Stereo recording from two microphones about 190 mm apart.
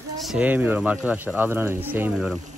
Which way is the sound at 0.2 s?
5° right (ahead or behind).